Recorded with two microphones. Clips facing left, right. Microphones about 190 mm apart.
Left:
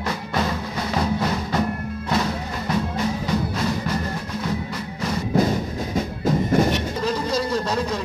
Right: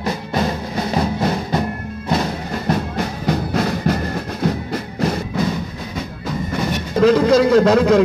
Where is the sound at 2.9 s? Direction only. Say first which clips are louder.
Right 2 dB; 65° right (ahead or behind).